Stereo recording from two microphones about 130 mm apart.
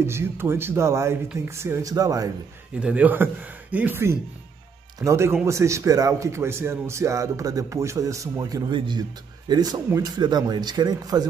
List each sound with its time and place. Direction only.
0.0 s a man's voice: 20° right (ahead or behind)
2.8 s a man's voice: 10° right (ahead or behind); by 11.2 s 30° right (ahead or behind)